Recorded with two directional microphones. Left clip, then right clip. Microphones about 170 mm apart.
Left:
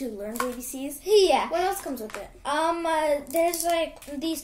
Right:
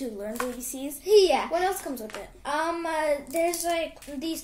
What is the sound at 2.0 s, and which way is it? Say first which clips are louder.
Speech: left 2 dB; 10° left (ahead or behind).